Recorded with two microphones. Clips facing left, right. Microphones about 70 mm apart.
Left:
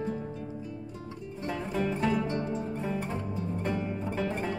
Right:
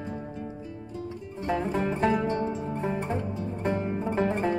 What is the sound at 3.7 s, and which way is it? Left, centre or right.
Music, right.